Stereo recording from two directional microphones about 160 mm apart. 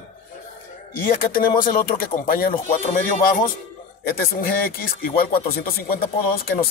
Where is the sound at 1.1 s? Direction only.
65° left (ahead or behind).